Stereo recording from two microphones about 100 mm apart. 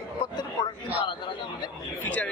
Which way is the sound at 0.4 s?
45° left (ahead or behind).